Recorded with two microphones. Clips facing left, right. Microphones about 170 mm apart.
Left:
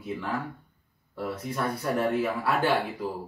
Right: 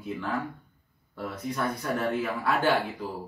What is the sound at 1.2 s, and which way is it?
Speech, centre (ahead or behind).